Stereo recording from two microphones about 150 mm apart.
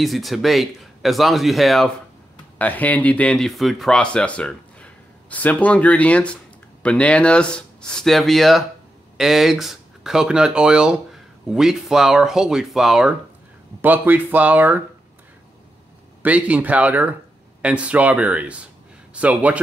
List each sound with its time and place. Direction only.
0.0 s speech: centre (ahead or behind)
2.6 s speech: 10° left (ahead or behind); by 14.8 s 10° right (ahead or behind)
16.2 s speech: 10° right (ahead or behind)